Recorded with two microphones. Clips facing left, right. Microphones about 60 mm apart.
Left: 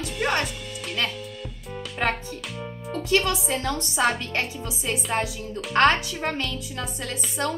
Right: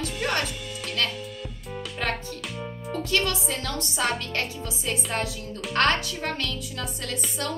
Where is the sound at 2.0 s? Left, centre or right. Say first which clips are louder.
Left 4 dB; left.